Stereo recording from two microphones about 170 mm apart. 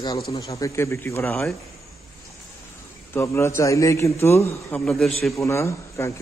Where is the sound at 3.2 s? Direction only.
15° left (ahead or behind).